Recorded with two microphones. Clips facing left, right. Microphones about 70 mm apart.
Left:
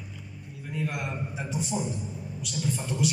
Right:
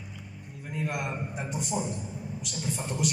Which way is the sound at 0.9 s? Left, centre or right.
Right.